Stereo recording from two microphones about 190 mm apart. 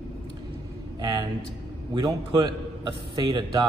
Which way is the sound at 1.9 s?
25° right (ahead or behind).